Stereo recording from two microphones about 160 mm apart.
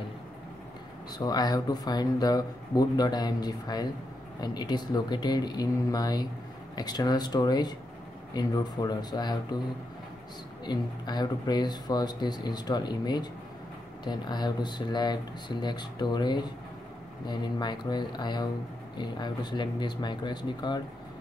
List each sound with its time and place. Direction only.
1.1 s speech: 25° left (ahead or behind)
10.6 s speech: 25° left (ahead or behind)